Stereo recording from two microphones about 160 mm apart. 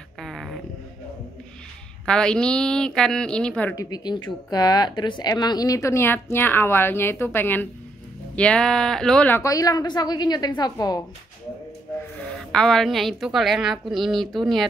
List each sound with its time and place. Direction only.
0.2 s a sound: centre (ahead or behind)
2.0 s a woman's voice: 5° left (ahead or behind)
3.7 s a woman's voice: 25° left (ahead or behind); by 9.4 s 5° left (ahead or behind)
9.4 s speech: 20° left (ahead or behind)
12.4 s a woman's voice: 5° left (ahead or behind)